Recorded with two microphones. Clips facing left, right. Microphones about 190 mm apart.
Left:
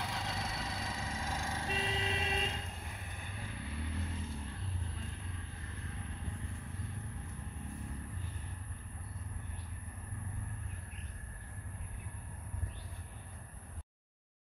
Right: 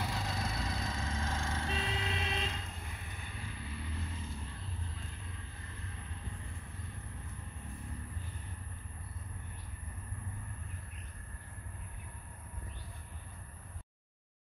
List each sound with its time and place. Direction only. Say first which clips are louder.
0.0 s vehicle: right 2 dB; centre (ahead or behind); by 2.3 s 25° left (ahead or behind)
2.3 s vehicle: left 1 dB; 45° left (ahead or behind)